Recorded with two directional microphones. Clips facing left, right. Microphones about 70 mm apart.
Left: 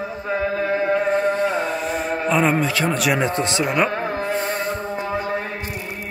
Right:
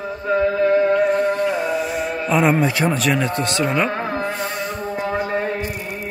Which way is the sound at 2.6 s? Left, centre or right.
Right.